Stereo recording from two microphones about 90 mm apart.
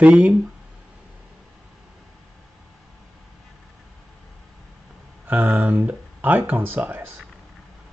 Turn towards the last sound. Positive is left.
turn(degrees=-20)  # may be behind; listen again after turning